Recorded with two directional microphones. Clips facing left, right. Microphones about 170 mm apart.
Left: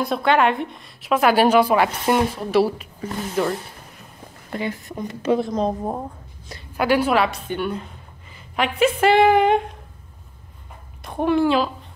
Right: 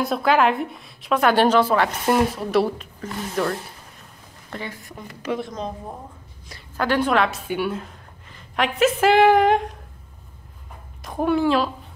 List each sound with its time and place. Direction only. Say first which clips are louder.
0.0 s a woman's voice: even; centre (ahead or behind)
2.0 s a woman's voice: even; centre (ahead or behind); by 5.8 s 35° left (ahead or behind)
6.8 s a woman's voice: left 2 dB; 10° left (ahead or behind)
11.1 s a woman's voice: left 1 dB; centre (ahead or behind)